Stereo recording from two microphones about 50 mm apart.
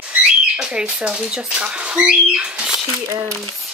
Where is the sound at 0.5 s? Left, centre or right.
Centre.